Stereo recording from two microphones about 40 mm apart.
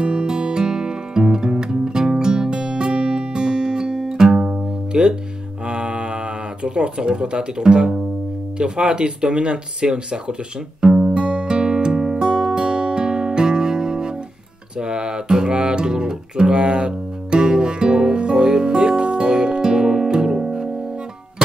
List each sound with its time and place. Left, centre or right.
0.0 s music: right
5.7 s a sound: right
8.5 s speech: right
10.8 s music: centre